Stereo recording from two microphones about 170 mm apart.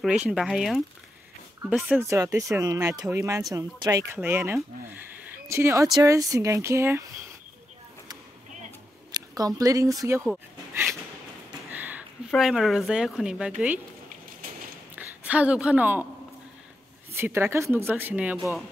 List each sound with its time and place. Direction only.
0.0 s speech: 5° right (ahead or behind)
2.0 s speech: 15° right (ahead or behind)
9.1 s a sound: 20° right (ahead or behind)
9.6 s speech: 20° right (ahead or behind)
11.7 s a sound: 10° right (ahead or behind)
12.4 s speech: centre (ahead or behind)
15.0 s a woman's voice: 10° right (ahead or behind)
17.1 s speech: 15° right (ahead or behind)